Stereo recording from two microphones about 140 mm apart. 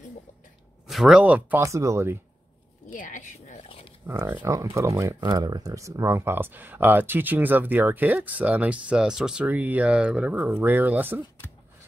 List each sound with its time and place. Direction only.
0.8 s speech: centre (ahead or behind)
1.6 s speech: 20° right (ahead or behind)
2.9 s a sound: 70° left (ahead or behind)
4.1 s speech: 20° right (ahead or behind)